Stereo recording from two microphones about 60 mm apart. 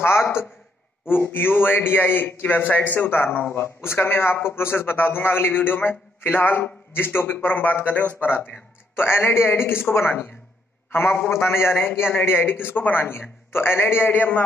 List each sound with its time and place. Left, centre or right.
0.0 s a man's voice: left
3.5 s a man's voice: left
8.5 s a man's voice: left